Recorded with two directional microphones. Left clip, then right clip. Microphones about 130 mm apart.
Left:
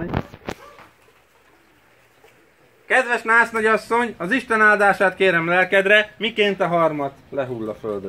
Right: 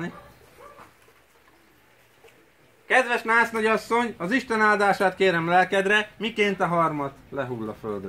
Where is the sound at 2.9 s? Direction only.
35° right (ahead or behind).